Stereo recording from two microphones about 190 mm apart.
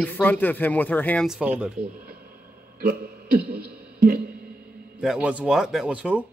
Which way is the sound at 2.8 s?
55° right (ahead or behind).